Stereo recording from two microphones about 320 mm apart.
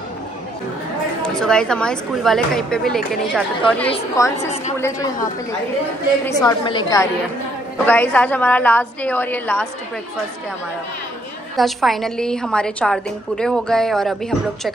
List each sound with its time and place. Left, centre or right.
1.2 s a woman's voice: centre
3.9 s a woman's voice: centre
11.5 s a woman's voice: centre